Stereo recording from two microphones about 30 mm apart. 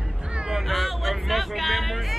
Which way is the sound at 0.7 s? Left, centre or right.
Centre.